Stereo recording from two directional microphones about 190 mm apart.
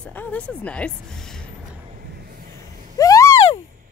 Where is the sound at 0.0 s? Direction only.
10° left (ahead or behind).